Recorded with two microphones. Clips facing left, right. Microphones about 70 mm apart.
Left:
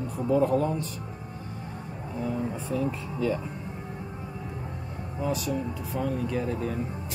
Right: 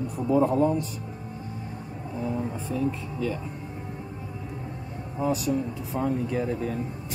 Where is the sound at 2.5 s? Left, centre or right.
Centre.